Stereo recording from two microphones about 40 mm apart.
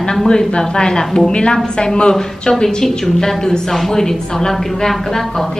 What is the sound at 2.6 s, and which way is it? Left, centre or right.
A woman's voice, centre.